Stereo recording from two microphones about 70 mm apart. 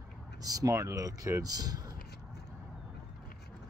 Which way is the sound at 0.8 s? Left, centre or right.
Right.